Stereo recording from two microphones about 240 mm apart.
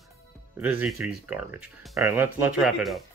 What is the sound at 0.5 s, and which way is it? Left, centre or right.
Speech, centre.